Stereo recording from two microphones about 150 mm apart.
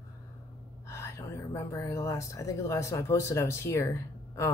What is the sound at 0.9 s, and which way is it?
Speech, 20° left (ahead or behind).